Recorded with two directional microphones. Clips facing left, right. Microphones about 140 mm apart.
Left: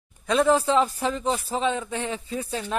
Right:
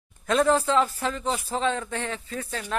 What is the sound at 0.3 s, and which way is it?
Speech, 5° left (ahead or behind).